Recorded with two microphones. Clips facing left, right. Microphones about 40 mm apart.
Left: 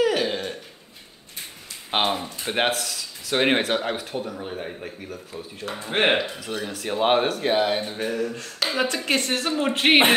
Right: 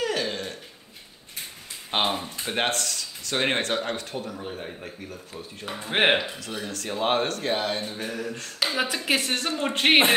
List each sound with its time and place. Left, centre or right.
0.0 s throat clearing: centre
1.9 s speech: left; by 5.8 s centre
5.8 s speech: centre
6.3 s speech: centre
8.2 s speech: centre